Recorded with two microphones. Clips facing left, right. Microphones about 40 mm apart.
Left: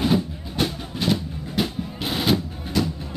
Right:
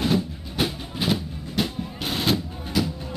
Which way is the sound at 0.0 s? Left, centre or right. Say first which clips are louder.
Left 2 dB; centre.